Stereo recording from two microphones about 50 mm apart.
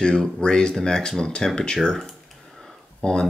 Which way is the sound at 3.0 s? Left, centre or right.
Centre.